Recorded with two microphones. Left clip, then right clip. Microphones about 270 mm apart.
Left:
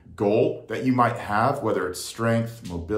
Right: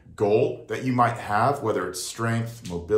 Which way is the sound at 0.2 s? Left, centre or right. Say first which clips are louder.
Even; centre.